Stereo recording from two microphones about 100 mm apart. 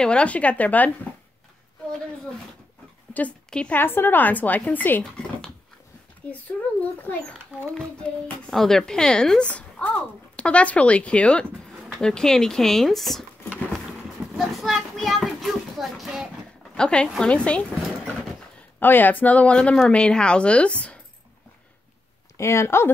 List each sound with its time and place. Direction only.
0.0 s a child's voice: 10° left (ahead or behind)
3.1 s a child's voice: 15° left (ahead or behind)
6.3 s a child's voice: 15° left (ahead or behind)
14.3 s children playing: centre (ahead or behind)
16.7 s a child's voice: 10° left (ahead or behind)
18.8 s a child's voice: 20° left (ahead or behind)
22.4 s speech: 25° left (ahead or behind)